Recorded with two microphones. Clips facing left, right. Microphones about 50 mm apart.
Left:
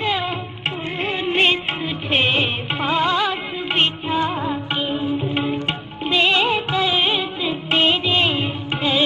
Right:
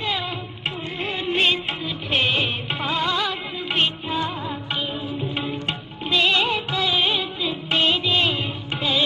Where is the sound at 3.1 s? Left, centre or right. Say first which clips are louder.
Left 4 dB; left.